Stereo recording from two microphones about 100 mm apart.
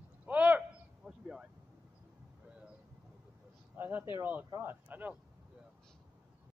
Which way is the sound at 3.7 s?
20° right (ahead or behind).